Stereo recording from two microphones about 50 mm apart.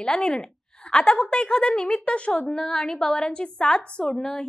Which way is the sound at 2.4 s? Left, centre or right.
Centre.